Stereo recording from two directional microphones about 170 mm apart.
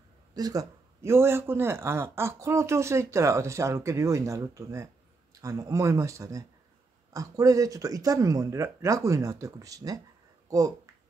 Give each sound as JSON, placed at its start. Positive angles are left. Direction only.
{"t": 0.3, "sound": "speech", "side_deg": -20}